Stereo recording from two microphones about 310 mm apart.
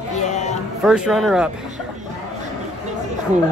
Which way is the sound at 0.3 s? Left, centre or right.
Left.